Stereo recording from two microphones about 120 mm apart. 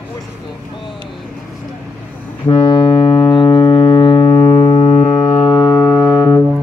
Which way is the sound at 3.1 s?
35° left (ahead or behind).